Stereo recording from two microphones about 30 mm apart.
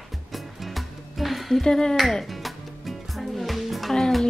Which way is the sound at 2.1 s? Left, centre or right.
Centre.